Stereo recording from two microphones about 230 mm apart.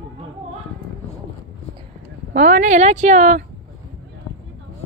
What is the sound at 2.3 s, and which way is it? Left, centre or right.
A woman's voice, right.